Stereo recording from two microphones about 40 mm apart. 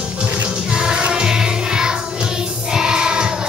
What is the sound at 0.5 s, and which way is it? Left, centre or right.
Music, centre.